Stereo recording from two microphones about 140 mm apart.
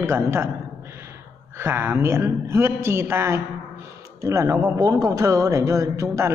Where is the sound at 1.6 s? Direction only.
15° right (ahead or behind).